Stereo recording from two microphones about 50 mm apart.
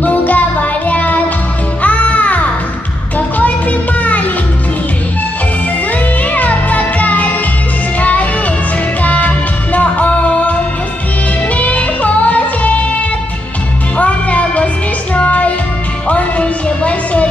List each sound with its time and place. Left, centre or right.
0.0 s music: left
6.3 s music: left
11.5 s music: left
13.9 s music: left